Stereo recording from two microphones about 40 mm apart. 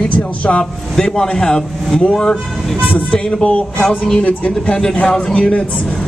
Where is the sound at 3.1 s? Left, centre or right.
Left.